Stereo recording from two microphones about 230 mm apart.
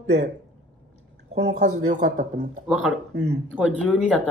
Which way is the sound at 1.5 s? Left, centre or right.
Right.